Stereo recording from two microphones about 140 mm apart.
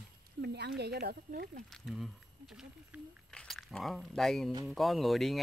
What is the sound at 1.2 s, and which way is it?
Speech, 80° right.